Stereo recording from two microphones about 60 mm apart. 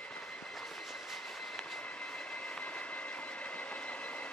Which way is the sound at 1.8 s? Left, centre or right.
Centre.